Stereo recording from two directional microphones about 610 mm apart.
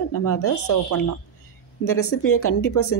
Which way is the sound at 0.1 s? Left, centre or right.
Left.